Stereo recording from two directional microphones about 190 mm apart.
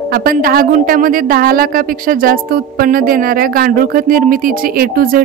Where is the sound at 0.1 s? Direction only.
50° right (ahead or behind).